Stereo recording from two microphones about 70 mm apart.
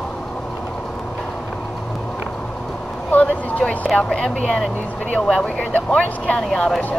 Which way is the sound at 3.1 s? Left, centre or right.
Centre.